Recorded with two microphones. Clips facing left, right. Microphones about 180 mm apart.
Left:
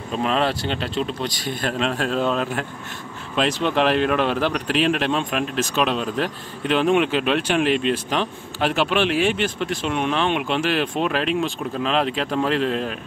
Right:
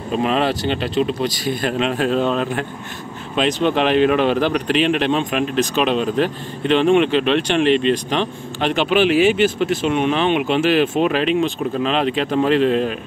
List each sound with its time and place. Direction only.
0.2 s speech: 5° right (ahead or behind)